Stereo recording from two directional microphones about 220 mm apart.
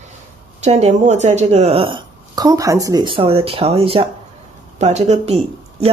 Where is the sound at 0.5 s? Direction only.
30° right (ahead or behind).